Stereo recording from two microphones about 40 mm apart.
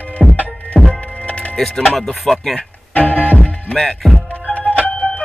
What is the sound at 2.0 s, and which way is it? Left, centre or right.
Speech, centre.